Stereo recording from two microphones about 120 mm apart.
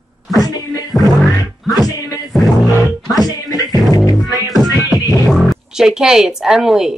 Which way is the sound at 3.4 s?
30° left (ahead or behind).